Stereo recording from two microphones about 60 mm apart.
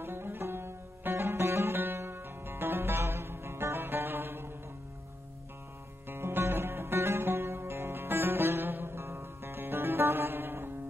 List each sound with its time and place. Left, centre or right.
0.0 s music: right
6.0 s music: right